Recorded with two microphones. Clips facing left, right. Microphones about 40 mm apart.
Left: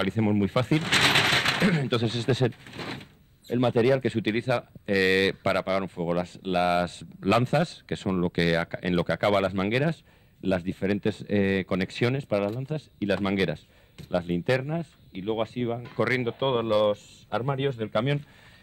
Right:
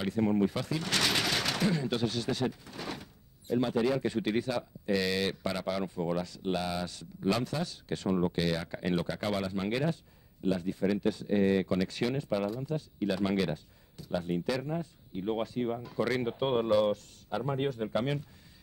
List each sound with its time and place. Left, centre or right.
0.0 s speech: left